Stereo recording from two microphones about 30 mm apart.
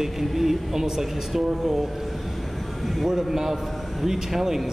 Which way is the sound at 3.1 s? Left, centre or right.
Centre.